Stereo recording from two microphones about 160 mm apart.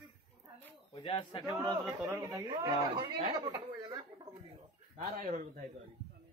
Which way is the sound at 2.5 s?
30° right (ahead or behind).